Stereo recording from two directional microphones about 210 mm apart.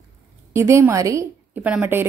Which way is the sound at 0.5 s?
10° right (ahead or behind).